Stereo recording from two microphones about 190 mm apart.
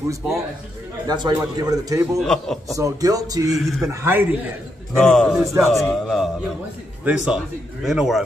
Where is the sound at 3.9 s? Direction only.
15° right (ahead or behind).